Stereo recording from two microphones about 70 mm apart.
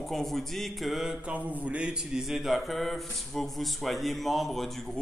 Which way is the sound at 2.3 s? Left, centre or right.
Centre.